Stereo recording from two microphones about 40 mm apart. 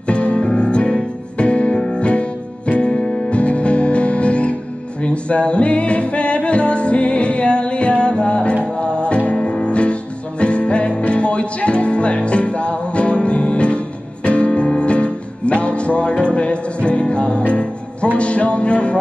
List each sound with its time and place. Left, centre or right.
0.1 s music: left